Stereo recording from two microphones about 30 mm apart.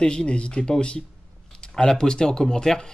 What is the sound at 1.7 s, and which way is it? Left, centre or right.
Speech, left.